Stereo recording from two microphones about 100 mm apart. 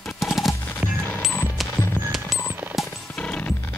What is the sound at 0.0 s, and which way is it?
Music, centre (ahead or behind).